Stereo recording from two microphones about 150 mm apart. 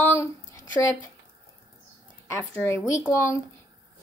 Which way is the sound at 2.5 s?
15° left (ahead or behind).